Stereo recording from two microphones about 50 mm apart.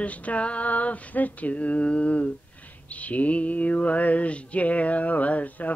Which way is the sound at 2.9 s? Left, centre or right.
Left.